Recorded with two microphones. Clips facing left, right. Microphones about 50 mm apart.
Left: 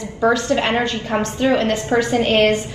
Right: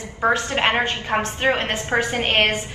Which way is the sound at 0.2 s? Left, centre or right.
Right.